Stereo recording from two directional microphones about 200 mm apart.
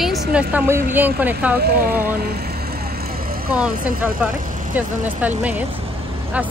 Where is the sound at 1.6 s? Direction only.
50° right (ahead or behind).